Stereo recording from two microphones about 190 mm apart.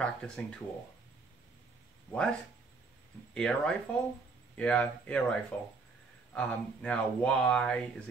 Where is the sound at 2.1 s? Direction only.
5° left (ahead or behind).